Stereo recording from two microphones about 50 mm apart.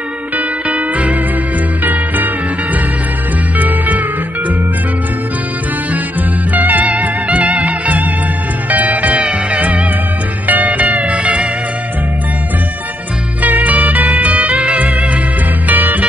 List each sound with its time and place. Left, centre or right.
0.7 s music: right
3.5 s music: right
6.5 s music: right
13.4 s music: right
14.3 s music: right
15.7 s music: right